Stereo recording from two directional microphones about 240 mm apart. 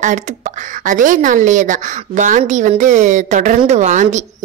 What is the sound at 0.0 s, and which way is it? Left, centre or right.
A woman's voice, right.